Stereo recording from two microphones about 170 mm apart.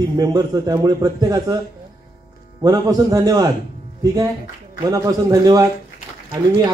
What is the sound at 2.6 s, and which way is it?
Speech, 20° right (ahead or behind).